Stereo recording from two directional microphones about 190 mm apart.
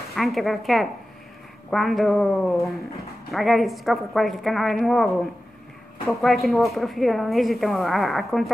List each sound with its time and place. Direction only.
0.1 s speech: centre (ahead or behind)